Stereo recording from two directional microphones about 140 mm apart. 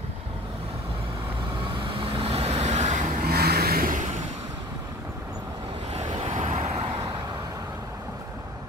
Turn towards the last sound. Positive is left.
turn(degrees=-25)  # may be behind; listen again after turning